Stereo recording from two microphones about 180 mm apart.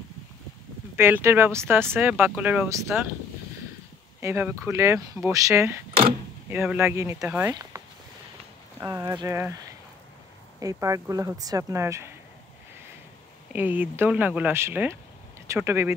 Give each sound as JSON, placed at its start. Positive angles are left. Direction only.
{"t": 0.9, "sound": "speech", "side_deg": -15}
{"t": 4.2, "sound": "speech", "side_deg": -10}
{"t": 7.7, "sound": "a sound", "side_deg": -20}
{"t": 8.7, "sound": "speech", "side_deg": -15}
{"t": 13.5, "sound": "speech", "side_deg": -10}